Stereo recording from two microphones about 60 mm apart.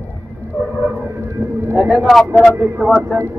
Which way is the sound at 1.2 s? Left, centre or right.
Right.